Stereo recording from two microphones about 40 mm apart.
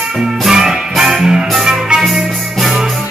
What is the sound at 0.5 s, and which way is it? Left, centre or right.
Music, centre.